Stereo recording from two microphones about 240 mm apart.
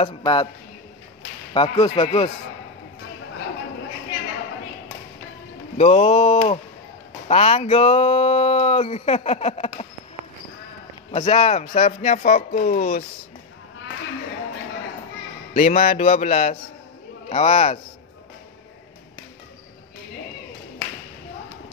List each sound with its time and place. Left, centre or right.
0.0 s speech: centre
1.5 s a man's voice: centre
5.8 s speech: left
11.1 s speech: left
15.5 s speech: left